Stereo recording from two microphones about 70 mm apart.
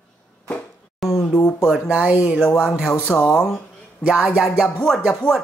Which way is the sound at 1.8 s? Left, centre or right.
Centre.